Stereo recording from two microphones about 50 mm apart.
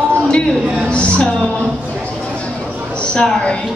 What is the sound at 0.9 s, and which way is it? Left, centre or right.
Speech, left.